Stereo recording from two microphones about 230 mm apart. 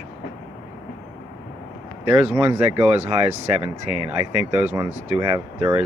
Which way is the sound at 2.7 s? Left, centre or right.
Right.